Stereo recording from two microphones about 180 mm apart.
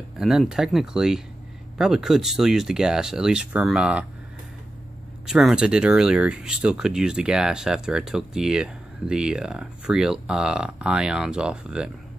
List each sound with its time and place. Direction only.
0.2 s speech: centre (ahead or behind)
5.2 s speech: 5° right (ahead or behind)